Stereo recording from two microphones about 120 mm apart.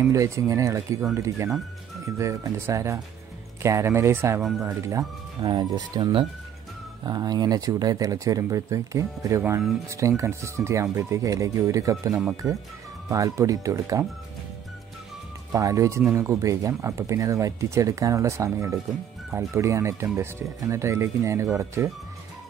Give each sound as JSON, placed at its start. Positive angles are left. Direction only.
{"t": 0.0, "sound": "speech", "side_deg": -25}
{"t": 15.5, "sound": "speech", "side_deg": -25}